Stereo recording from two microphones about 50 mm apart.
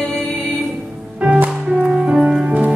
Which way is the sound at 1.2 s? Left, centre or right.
Right.